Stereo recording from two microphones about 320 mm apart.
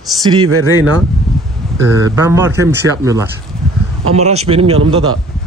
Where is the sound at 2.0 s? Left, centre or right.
Centre.